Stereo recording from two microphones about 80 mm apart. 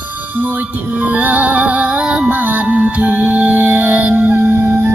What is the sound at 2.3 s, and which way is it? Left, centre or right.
Music, right.